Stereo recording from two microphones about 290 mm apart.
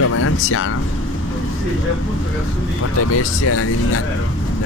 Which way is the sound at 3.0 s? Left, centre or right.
Left.